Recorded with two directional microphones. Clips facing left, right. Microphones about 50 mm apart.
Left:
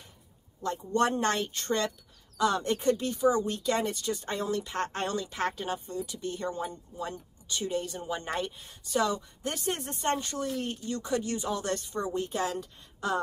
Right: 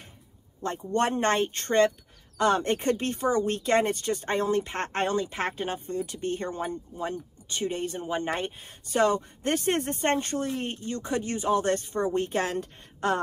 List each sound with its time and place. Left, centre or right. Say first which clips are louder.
0.6 s speech: right 1 dB; right